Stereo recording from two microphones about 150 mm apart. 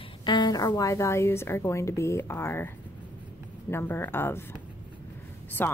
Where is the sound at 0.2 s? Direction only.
30° left (ahead or behind); by 2.7 s 15° left (ahead or behind).